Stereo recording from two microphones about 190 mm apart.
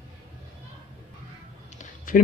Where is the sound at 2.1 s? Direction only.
45° left (ahead or behind).